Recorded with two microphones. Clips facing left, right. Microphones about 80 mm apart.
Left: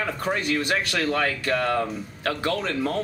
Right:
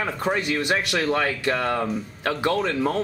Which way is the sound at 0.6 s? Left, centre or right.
Centre.